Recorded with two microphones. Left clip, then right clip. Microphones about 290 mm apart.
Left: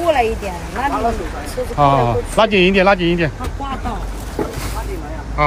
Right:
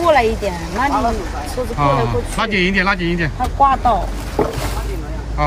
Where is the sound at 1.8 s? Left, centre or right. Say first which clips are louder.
Left 3 dB; centre.